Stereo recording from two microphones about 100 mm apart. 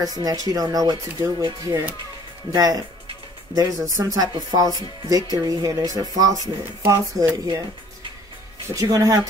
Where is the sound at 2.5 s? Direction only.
35° right (ahead or behind).